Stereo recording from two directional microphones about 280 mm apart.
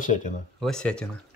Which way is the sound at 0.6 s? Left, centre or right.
Centre.